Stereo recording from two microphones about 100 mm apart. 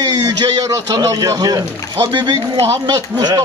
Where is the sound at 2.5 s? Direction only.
35° right (ahead or behind).